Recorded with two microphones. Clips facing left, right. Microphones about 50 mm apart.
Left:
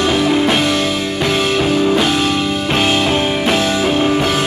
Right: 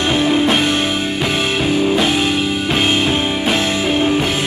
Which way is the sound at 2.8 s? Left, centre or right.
Right.